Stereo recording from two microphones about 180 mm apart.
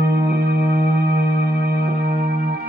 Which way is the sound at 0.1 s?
55° right (ahead or behind).